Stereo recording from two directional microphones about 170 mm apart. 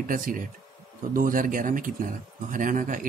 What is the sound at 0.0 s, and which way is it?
Speech, 50° right (ahead or behind).